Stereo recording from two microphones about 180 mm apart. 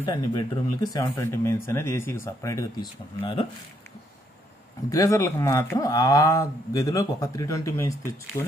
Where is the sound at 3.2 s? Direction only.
30° left (ahead or behind).